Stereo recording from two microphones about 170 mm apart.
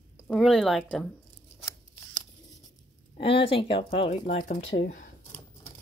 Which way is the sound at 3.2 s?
30° left (ahead or behind).